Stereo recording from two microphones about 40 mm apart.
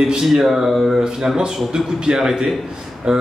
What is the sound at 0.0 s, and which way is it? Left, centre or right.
A man's voice, centre.